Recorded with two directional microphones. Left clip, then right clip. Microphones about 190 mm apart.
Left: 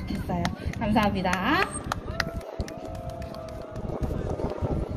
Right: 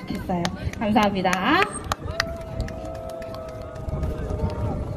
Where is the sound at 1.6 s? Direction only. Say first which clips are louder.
Right 4 dB; 65° right (ahead or behind).